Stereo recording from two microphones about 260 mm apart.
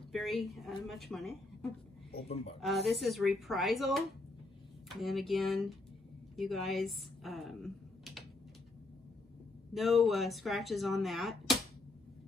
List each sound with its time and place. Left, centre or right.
0.1 s speech: centre
5.0 s speech: centre
9.8 s speech: centre